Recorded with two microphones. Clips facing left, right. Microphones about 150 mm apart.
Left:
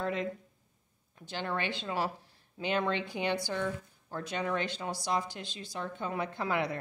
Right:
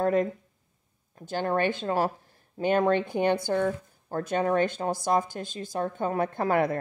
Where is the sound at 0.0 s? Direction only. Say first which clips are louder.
Right 9 dB; 50° right (ahead or behind).